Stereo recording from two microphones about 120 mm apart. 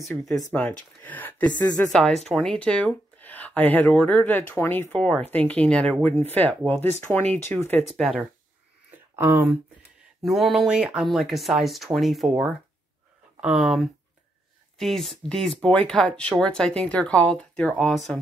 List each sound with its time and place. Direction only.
0.1 s speech: 5° left (ahead or behind)
0.6 s speech: 15° left (ahead or behind)
7.9 s speech: 5° left (ahead or behind)
9.1 s speech: 20° right (ahead or behind)
10.2 s speech: centre (ahead or behind)